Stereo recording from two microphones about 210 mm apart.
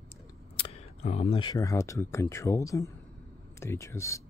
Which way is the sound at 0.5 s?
30° left (ahead or behind).